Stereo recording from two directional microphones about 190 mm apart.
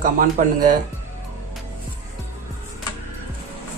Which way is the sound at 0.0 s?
45° right (ahead or behind).